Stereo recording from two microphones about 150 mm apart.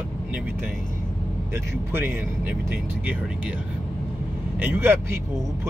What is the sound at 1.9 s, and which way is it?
Speech, 15° right (ahead or behind).